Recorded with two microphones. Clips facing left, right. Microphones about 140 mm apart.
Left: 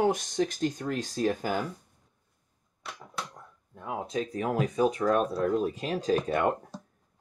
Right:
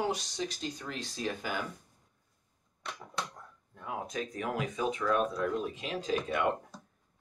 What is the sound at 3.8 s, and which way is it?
Speech, 25° left (ahead or behind).